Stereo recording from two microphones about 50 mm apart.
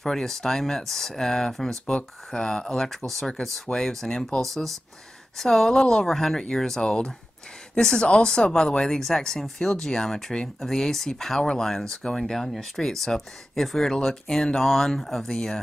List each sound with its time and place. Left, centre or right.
0.0 s speech: centre
15.3 s speech: centre